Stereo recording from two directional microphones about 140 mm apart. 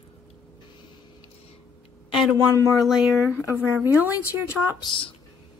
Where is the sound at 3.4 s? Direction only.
15° right (ahead or behind).